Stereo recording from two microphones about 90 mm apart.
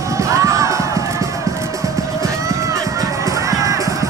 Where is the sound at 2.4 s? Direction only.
40° right (ahead or behind).